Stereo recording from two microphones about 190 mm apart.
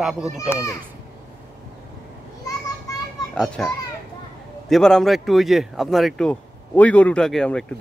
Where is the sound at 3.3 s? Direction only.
5° left (ahead or behind).